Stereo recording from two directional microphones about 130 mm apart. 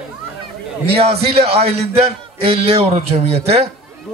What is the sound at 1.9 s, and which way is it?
A man's voice, 50° right (ahead or behind).